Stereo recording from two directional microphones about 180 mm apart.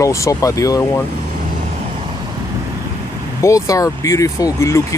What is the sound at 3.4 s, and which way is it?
Speech, 15° left (ahead or behind).